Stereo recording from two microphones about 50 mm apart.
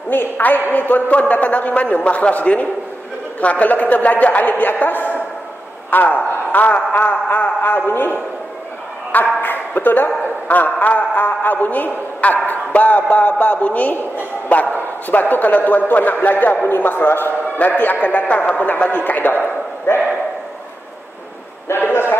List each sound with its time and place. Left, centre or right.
0.1 s a man's voice: left
21.6 s a man's voice: left